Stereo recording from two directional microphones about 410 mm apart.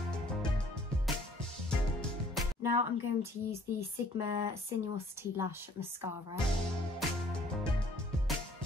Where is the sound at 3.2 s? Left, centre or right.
Centre.